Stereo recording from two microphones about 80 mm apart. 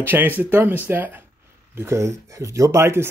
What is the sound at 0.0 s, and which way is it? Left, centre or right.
Speech, right.